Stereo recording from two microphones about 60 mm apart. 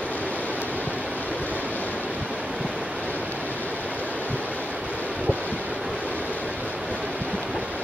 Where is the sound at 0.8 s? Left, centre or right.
Right.